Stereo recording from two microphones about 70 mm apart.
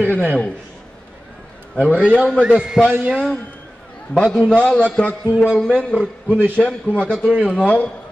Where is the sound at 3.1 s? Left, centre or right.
Centre.